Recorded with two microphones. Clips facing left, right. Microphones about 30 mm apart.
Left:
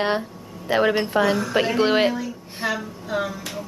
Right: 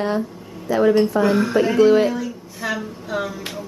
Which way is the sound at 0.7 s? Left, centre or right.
Left.